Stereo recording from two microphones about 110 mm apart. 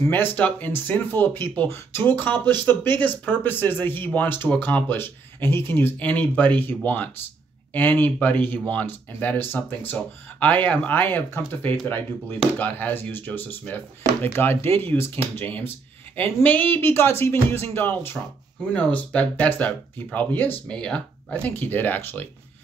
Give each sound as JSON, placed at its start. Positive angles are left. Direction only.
{"t": 0.0, "sound": "speech", "side_deg": 20}